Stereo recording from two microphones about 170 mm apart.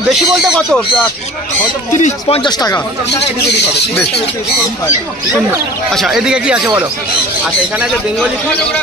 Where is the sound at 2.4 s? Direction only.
25° left (ahead or behind).